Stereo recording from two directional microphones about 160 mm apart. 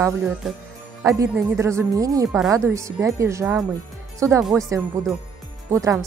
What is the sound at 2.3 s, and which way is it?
Speech, centre (ahead or behind).